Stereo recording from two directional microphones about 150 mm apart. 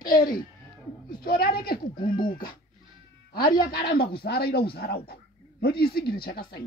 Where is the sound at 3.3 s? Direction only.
90° left.